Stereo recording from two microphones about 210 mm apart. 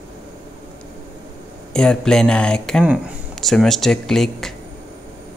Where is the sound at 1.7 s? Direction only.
5° left (ahead or behind).